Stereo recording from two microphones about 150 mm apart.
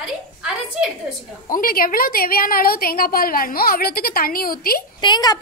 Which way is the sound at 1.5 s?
70° left (ahead or behind).